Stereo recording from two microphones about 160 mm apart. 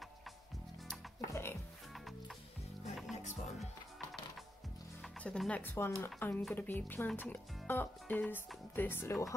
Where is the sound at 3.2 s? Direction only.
45° left (ahead or behind).